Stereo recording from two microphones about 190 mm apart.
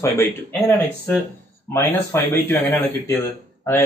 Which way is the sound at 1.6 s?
15° left (ahead or behind).